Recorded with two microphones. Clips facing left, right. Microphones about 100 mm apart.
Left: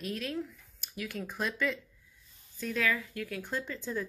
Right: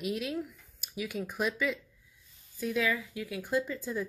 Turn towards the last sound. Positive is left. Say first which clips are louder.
# right 4 dB
turn(degrees=-5)  # may be behind; listen again after turning